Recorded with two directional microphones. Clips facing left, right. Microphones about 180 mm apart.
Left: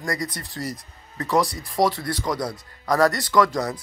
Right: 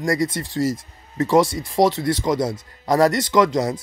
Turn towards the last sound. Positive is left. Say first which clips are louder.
# right 3 dB
turn(degrees=-20)  # may be behind; listen again after turning